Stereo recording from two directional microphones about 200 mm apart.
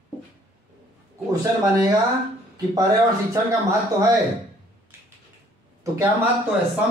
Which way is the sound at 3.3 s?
15° right (ahead or behind).